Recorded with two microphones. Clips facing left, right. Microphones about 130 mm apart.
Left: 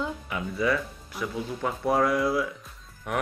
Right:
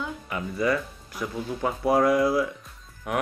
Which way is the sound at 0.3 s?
Centre (ahead or behind).